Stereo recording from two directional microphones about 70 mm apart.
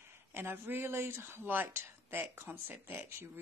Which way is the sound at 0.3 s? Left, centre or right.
Right.